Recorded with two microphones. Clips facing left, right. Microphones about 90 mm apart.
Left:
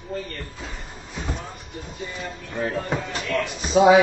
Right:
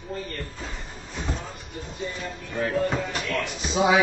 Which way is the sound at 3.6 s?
45° left (ahead or behind).